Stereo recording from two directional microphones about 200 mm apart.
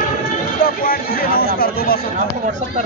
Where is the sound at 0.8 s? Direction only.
45° left (ahead or behind).